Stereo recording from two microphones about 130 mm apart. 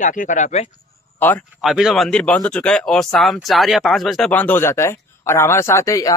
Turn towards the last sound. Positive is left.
turn(degrees=25)  # may be behind; listen again after turning